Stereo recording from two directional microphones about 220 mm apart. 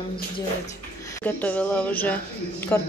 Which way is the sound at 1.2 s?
5° left (ahead or behind).